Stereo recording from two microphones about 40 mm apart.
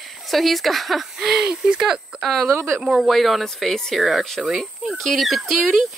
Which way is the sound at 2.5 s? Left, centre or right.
Right.